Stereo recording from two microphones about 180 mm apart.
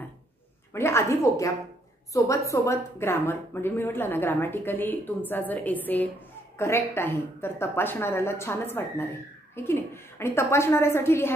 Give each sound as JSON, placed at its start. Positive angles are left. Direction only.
{"t": 0.7, "sound": "a woman's voice", "side_deg": 15}